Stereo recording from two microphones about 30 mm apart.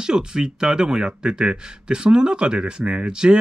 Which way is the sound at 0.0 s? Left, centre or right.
Right.